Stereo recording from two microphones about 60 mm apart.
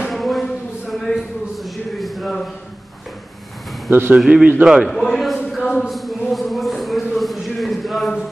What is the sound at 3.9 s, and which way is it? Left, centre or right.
Speech, right.